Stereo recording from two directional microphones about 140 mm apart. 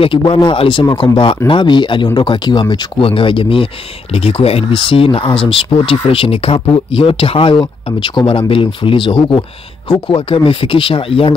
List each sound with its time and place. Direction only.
0.0 s speech: 40° left (ahead or behind)